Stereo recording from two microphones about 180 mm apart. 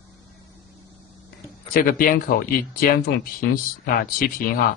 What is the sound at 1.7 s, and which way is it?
Speech, 50° left (ahead or behind).